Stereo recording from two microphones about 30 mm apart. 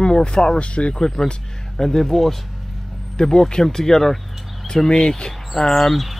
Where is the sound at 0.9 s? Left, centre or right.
Left; by 2.4 s centre.